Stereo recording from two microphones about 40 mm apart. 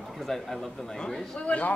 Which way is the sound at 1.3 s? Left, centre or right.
Left.